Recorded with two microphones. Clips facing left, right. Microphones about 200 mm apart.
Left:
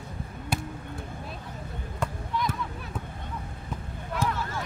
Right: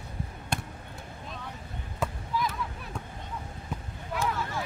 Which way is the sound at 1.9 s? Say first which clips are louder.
Even; centre (ahead or behind).